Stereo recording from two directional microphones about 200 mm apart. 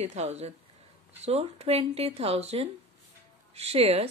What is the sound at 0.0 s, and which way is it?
Speech, 35° right (ahead or behind).